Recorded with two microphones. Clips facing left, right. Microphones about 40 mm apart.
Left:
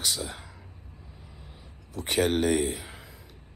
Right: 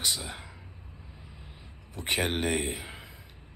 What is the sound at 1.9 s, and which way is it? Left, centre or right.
A man's voice, centre.